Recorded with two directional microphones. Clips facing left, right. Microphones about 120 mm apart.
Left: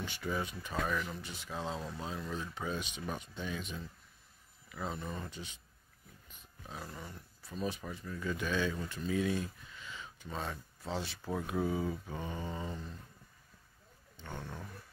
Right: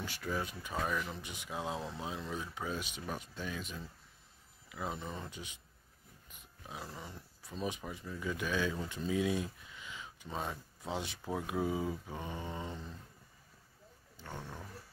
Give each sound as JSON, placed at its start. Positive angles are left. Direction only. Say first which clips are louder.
{"t": 0.0, "sound": "speech", "louder": "left 1 dB", "side_deg": 0}
{"t": 4.9, "sound": "speech", "louder": "left 1 dB", "side_deg": -20}
{"t": 6.7, "sound": "speech", "louder": "even", "side_deg": -10}
{"t": 12.5, "sound": "speech", "louder": "left 1 dB", "side_deg": -15}
{"t": 14.1, "sound": "roaring cats", "louder": "left 1 dB", "side_deg": -5}